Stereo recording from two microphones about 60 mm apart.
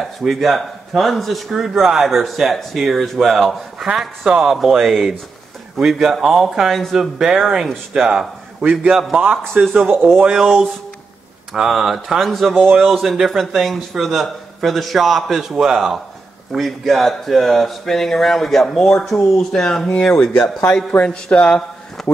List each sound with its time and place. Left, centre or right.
0.0 s a man's voice: centre
8.5 s a man's voice: right
10.2 s a man's voice: centre
22.0 s speech: centre